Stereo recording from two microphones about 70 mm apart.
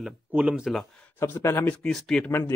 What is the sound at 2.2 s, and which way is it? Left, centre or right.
Speech, left.